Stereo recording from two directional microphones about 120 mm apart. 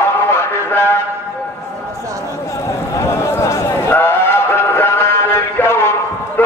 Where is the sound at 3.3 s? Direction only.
20° left (ahead or behind).